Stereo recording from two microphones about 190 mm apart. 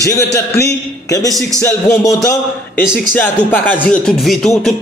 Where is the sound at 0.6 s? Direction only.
15° left (ahead or behind).